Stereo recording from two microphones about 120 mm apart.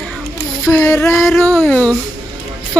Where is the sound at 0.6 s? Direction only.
15° left (ahead or behind).